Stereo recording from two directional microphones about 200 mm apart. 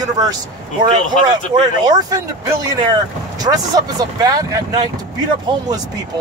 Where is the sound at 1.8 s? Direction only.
20° right (ahead or behind).